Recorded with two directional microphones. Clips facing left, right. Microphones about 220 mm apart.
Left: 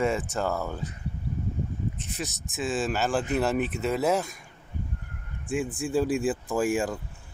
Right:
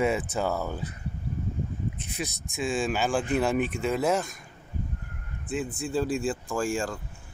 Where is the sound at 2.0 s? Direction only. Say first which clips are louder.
Even; centre (ahead or behind).